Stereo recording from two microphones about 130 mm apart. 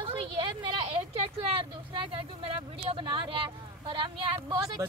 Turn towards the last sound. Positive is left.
turn(degrees=-35)  # may be behind; listen again after turning